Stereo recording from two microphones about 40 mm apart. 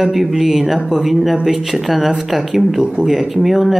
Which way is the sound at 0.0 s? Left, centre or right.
Centre.